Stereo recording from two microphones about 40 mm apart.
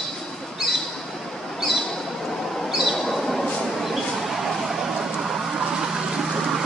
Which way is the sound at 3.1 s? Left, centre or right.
Centre.